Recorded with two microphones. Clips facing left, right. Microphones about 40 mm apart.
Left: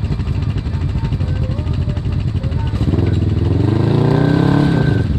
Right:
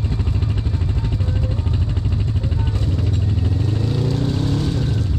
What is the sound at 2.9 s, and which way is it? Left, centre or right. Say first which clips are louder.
Vehicle: left 10 dB; left.